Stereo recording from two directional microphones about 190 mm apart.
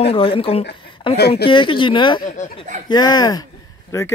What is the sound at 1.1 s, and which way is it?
Speech, 60° left (ahead or behind).